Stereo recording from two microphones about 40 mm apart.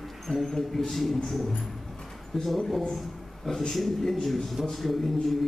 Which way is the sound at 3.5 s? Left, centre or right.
Centre.